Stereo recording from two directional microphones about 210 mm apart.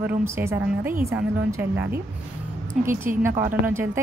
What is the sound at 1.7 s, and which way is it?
Speech, 55° right (ahead or behind).